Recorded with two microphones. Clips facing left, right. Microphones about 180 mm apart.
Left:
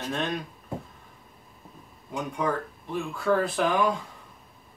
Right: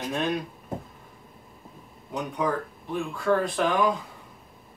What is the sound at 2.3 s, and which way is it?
Speech, centre (ahead or behind).